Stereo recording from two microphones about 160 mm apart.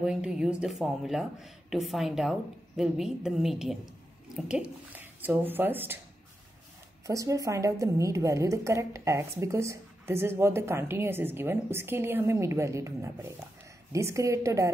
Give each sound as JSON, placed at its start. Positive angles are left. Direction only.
{"t": 0.0, "sound": "a woman's voice", "side_deg": -5}
{"t": 7.1, "sound": "a woman's voice", "side_deg": -20}